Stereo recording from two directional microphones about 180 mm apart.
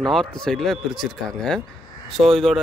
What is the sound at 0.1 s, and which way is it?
Speech, 5° left (ahead or behind).